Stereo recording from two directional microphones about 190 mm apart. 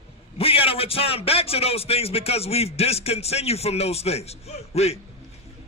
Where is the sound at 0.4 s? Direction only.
30° left (ahead or behind).